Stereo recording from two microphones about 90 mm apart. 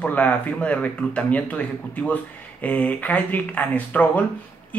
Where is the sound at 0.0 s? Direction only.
15° left (ahead or behind).